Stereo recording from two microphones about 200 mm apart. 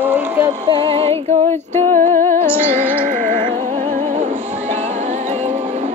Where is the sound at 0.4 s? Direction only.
25° right (ahead or behind).